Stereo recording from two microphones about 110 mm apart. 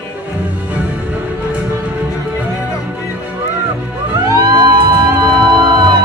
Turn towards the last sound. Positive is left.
turn(degrees=-40)  # may be behind; listen again after turning